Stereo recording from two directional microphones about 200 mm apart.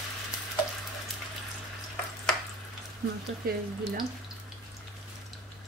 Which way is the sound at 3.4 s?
45° right (ahead or behind).